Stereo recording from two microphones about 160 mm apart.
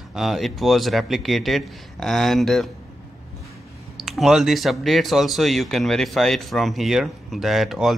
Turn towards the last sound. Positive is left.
turn(degrees=0)  # may be behind; listen again after turning